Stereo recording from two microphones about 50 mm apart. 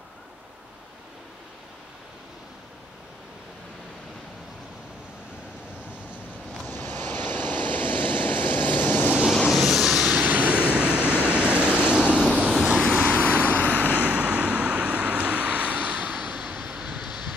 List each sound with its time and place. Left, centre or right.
6.7 s vehicle: left
9.5 s vehicle: centre
9.9 s vehicle: right
13.0 s vehicle: left
13.9 s vehicle: right
16.3 s vehicle: centre